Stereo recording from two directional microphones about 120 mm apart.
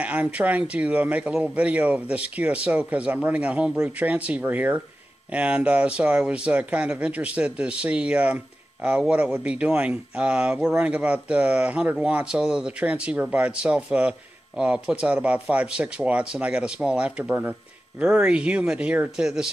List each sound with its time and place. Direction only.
0.0 s speech: 10° right (ahead or behind)